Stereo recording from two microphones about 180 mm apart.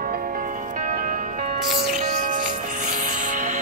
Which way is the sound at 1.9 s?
45° right (ahead or behind).